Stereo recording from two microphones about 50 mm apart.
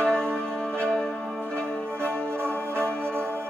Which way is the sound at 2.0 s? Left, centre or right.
Right.